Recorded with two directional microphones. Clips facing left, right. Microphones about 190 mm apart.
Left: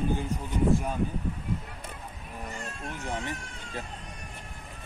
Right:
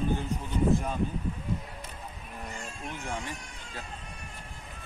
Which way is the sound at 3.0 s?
20° left (ahead or behind).